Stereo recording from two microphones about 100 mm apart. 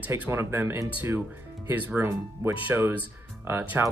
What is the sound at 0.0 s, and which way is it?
Speech, 20° right (ahead or behind).